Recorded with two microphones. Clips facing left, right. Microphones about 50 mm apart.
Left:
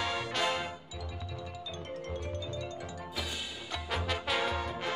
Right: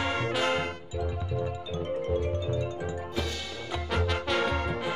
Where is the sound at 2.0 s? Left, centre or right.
Right.